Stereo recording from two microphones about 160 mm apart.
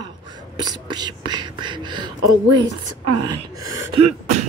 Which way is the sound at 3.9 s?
40° right (ahead or behind).